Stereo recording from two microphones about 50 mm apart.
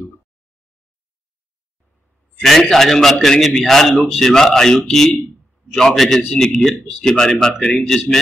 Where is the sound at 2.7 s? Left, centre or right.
Centre.